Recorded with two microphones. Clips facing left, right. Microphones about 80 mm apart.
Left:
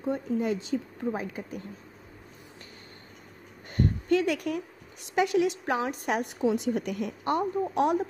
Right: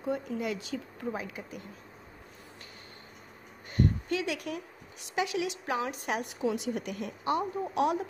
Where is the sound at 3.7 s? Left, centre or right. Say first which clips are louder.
Left 4 dB; left.